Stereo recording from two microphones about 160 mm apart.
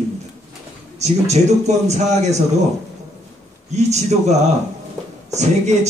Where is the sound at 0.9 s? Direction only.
45° right (ahead or behind).